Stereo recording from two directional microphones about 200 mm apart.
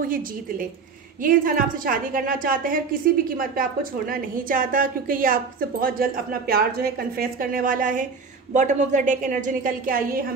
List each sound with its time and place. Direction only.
0.0 s a woman's voice: 45° right (ahead or behind)